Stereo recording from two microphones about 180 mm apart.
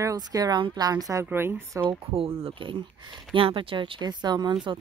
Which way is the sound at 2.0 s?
30° right (ahead or behind).